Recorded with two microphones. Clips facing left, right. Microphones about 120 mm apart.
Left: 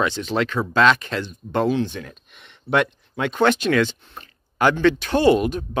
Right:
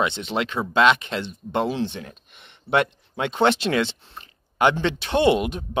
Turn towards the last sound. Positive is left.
turn(degrees=-20)  # may be behind; listen again after turning